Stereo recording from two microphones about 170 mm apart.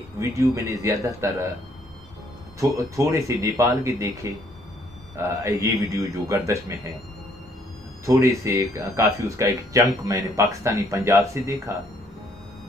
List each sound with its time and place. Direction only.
0.2 s speech: 15° right (ahead or behind)
3.0 s speech: 15° right (ahead or behind)
8.0 s speech: 15° right (ahead or behind)